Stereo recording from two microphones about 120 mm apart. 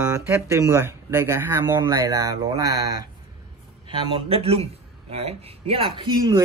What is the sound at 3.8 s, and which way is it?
Speech, 45° right (ahead or behind).